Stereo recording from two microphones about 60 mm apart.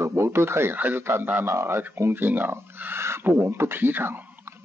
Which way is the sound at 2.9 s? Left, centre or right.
Right.